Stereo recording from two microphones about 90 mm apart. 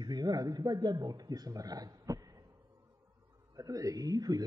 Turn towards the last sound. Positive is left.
turn(degrees=-45)  # may be behind; listen again after turning